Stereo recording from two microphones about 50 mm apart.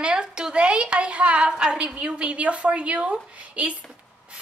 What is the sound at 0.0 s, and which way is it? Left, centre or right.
A woman's voice, centre.